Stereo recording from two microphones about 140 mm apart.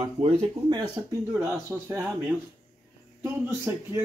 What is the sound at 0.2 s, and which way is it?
Speech, 50° right (ahead or behind).